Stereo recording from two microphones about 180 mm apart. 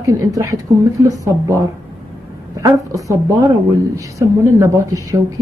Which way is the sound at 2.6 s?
20° right (ahead or behind).